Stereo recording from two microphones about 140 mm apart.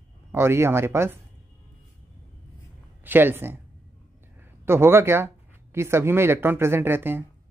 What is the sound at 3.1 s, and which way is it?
Speech, 15° right (ahead or behind).